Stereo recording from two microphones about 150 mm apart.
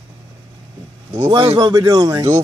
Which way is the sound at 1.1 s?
25° right (ahead or behind).